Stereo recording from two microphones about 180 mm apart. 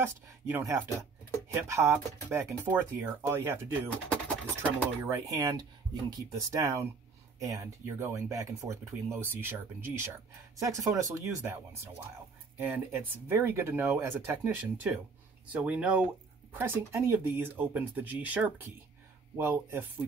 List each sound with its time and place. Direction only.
0.0 s speech: 15° right (ahead or behind)
12.5 s speech: 10° right (ahead or behind)